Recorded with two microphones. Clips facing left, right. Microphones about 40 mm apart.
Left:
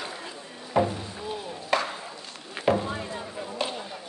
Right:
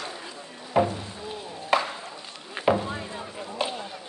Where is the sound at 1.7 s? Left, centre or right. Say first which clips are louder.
Right 2 dB; centre.